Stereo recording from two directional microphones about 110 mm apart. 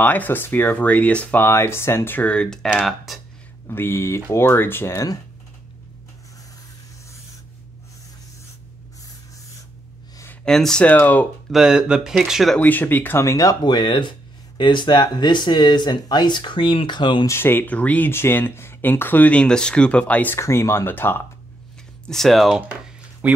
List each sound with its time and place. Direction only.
0.0 s speech: 15° left (ahead or behind)
3.6 s speech: 20° left (ahead or behind)
10.4 s speech: 5° left (ahead or behind)
11.5 s speech: 5° right (ahead or behind)
12.5 s speech: 15° left (ahead or behind); by 17.3 s 45° left (ahead or behind)
17.3 s speech: 20° left (ahead or behind)
20.3 s speech: 25° left (ahead or behind)
22.0 s speech: 5° left (ahead or behind)
23.2 s speech: 15° right (ahead or behind)